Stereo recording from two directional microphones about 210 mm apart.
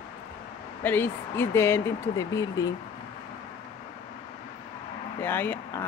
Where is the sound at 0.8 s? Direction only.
10° left (ahead or behind).